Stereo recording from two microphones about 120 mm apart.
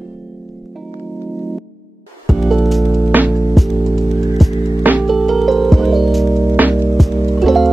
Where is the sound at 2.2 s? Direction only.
Centre (ahead or behind).